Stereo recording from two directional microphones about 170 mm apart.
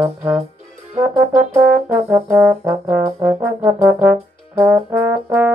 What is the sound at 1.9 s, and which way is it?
Brass instrument, 15° right (ahead or behind).